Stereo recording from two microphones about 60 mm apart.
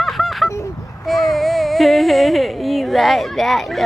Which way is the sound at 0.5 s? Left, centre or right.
Left.